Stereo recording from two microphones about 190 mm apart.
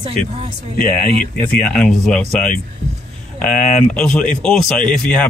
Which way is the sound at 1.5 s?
5° left (ahead or behind).